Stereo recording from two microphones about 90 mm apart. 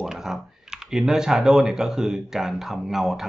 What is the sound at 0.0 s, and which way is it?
Speech, 5° right (ahead or behind).